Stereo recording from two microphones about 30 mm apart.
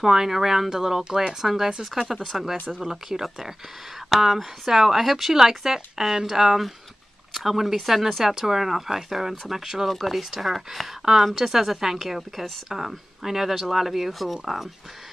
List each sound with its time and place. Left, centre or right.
0.0 s speech: centre
9.8 s speech: centre